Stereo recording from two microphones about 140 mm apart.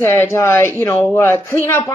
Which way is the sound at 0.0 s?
20° left (ahead or behind).